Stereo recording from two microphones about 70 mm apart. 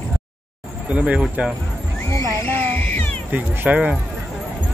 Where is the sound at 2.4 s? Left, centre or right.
Left.